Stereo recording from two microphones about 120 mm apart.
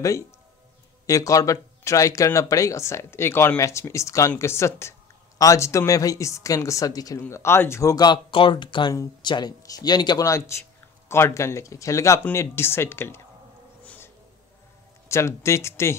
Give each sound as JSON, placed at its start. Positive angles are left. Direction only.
{"t": 1.0, "sound": "speech", "side_deg": 30}
{"t": 13.8, "sound": "music", "side_deg": 20}
{"t": 15.0, "sound": "speech", "side_deg": 25}